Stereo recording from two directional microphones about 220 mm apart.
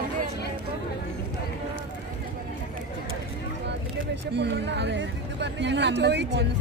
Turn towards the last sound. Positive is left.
turn(degrees=-50)  # may be behind; listen again after turning